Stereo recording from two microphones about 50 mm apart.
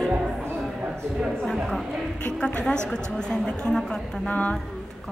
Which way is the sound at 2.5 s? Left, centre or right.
Left.